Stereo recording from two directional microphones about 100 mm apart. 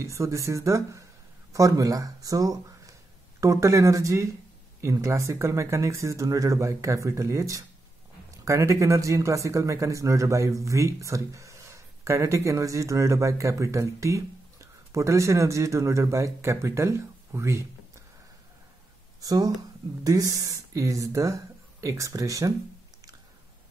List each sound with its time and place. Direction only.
0.0 s a man's voice: 30° right (ahead or behind)
19.2 s a man's voice: 40° right (ahead or behind)